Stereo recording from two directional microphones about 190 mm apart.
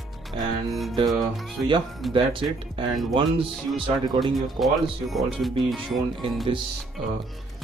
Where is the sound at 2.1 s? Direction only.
25° right (ahead or behind).